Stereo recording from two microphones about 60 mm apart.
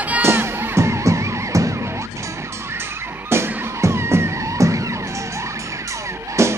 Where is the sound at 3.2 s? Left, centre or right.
Right.